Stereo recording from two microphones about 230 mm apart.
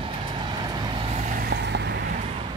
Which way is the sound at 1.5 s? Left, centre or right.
Right.